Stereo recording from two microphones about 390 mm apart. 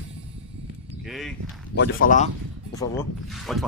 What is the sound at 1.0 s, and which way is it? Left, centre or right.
Speech, centre.